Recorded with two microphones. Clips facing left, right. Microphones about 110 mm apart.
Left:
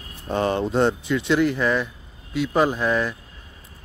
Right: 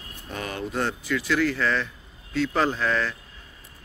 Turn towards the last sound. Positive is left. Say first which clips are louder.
# left 3 dB
turn(degrees=15)  # may be behind; listen again after turning